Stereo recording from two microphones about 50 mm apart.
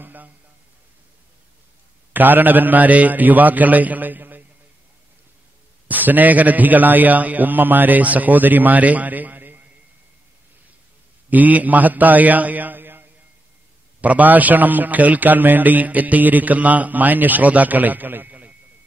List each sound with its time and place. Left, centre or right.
0.0 s a sound: right
2.1 s a man's voice: right
5.9 s a man's voice: right
11.2 s a man's voice: right
14.0 s a man's voice: right